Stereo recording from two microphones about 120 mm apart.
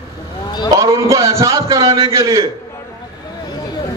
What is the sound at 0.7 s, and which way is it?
A man's voice, 25° right (ahead or behind).